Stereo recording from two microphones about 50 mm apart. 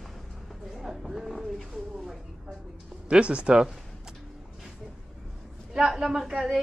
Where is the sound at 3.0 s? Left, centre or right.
Right.